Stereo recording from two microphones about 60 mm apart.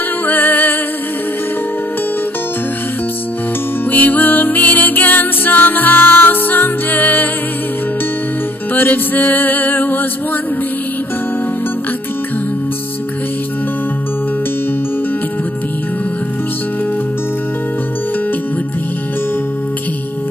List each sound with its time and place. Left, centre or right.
0.3 s music: left
3.9 s music: left
8.7 s music: left